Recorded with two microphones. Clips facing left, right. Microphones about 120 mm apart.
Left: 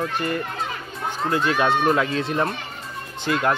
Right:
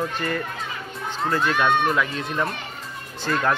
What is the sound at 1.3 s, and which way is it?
Speech, 15° left (ahead or behind).